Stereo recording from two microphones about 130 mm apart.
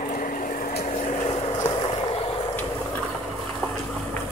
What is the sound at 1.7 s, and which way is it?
Boat, 40° left (ahead or behind).